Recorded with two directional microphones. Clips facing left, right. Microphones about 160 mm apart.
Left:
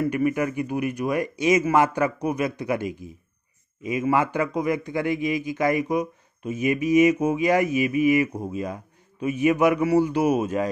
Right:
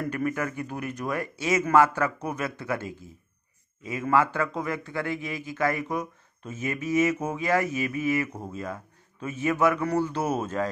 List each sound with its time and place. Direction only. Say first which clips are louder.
0.0 s a man's voice: left 6 dB; 15° left (ahead or behind)